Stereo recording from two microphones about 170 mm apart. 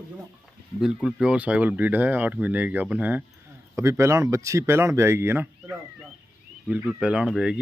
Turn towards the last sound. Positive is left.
turn(degrees=-5)  # may be behind; listen again after turning